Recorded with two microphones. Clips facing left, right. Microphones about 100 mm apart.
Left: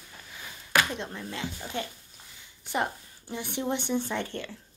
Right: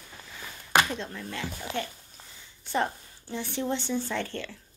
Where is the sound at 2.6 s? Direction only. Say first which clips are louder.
Right 1 dB; 15° left (ahead or behind).